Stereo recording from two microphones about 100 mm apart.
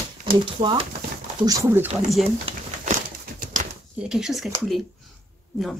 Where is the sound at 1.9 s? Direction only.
Centre (ahead or behind).